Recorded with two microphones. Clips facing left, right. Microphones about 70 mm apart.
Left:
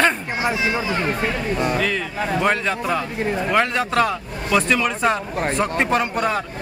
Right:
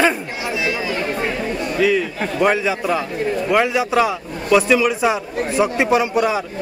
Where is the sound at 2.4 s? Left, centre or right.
Centre.